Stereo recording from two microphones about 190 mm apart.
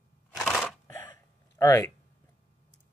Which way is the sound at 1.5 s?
15° left (ahead or behind).